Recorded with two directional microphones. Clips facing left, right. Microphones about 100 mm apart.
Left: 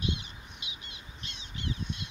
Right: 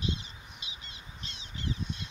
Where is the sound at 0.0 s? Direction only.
30° right (ahead or behind).